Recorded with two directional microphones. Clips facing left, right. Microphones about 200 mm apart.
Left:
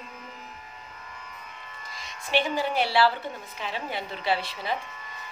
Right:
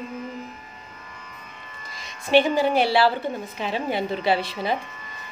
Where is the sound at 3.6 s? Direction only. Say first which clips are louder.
Right 7 dB; 15° right (ahead or behind).